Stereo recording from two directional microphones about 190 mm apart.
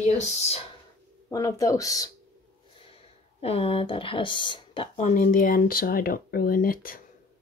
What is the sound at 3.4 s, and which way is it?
Speech, 30° left (ahead or behind).